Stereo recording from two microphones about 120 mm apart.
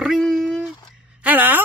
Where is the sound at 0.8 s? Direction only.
10° right (ahead or behind).